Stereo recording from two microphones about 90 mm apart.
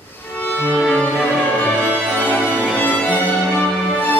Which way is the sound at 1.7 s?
10° right (ahead or behind).